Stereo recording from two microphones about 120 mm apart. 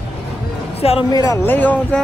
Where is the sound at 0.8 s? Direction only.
55° left (ahead or behind).